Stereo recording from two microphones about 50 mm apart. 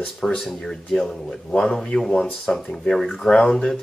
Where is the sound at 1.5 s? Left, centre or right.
Left.